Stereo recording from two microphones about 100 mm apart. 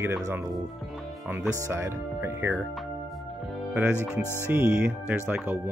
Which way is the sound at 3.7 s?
15° right (ahead or behind).